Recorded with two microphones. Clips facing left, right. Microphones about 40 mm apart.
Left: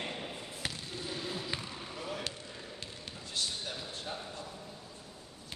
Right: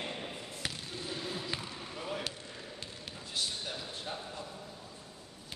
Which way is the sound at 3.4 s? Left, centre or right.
Centre.